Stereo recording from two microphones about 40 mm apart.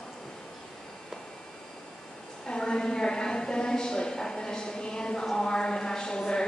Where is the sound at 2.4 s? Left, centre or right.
Centre.